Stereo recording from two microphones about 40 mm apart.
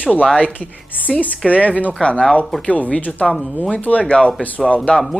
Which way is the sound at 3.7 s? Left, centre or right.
Left.